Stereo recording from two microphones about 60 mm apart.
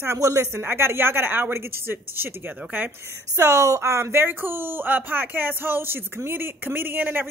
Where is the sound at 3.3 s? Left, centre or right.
Right.